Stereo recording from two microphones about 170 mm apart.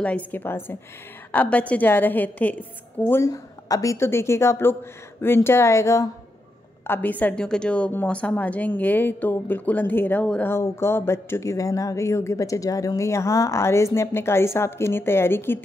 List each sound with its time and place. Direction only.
0.0 s a woman's voice: 10° left (ahead or behind)